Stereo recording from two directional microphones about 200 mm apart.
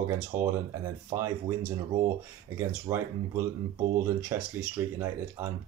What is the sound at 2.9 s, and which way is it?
Speech, 20° right (ahead or behind).